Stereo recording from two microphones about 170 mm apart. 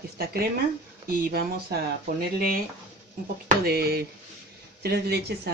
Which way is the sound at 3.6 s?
65° right (ahead or behind).